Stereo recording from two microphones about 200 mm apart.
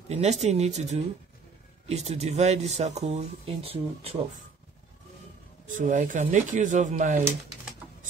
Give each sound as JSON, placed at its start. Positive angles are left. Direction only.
{"t": 0.1, "sound": "speech", "side_deg": -35}
{"t": 5.8, "sound": "speech", "side_deg": -40}